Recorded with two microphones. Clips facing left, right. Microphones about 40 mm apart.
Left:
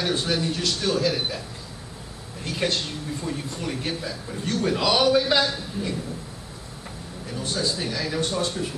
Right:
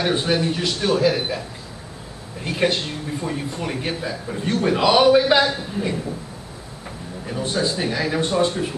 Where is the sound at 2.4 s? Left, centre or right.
Centre.